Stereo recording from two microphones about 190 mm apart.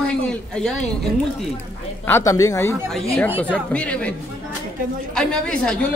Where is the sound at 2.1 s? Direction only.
15° left (ahead or behind).